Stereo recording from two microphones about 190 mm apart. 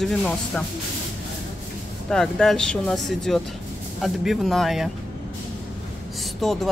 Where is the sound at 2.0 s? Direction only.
Centre (ahead or behind).